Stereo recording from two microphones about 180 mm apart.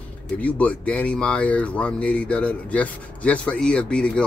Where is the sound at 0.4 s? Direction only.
10° left (ahead or behind).